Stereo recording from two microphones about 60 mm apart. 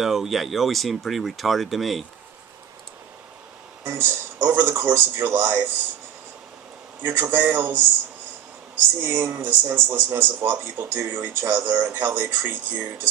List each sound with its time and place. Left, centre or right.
0.0 s speech: centre
3.8 s speech: right
7.0 s speech: right
9.0 s speech: right